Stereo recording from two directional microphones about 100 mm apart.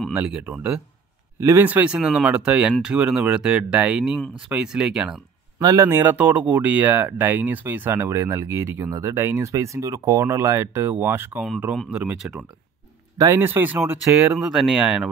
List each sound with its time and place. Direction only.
0.1 s speech: 10° right (ahead or behind)
1.6 s speech: 15° right (ahead or behind)
5.6 s speech: 40° right (ahead or behind)
5.9 s speech: 20° right (ahead or behind)
11.9 s speech: 10° right (ahead or behind)
13.4 s speech: 20° right (ahead or behind)
14.3 s speech: centre (ahead or behind)